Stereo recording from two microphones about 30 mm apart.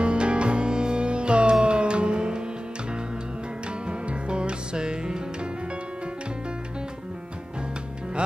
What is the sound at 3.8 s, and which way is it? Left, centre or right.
Music, right.